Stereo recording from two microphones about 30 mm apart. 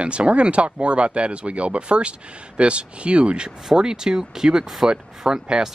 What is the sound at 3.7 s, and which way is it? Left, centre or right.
Speech, right.